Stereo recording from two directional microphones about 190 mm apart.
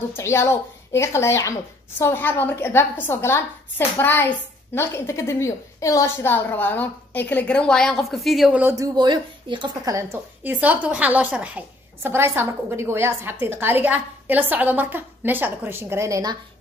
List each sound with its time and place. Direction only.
0.1 s a woman's voice: 15° left (ahead or behind); by 16.3 s 15° right (ahead or behind)